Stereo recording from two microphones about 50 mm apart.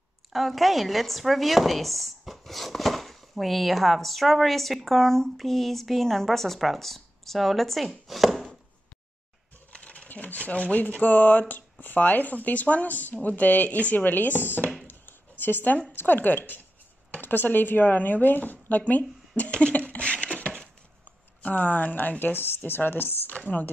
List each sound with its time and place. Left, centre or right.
0.3 s speech: centre
9.7 s speech: left
14.9 s a sound: left
15.9 s a woman's voice: left
23.3 s speech: left